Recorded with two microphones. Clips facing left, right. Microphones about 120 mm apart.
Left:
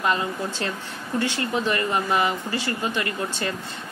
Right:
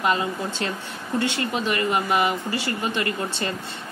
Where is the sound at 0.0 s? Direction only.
20° right (ahead or behind).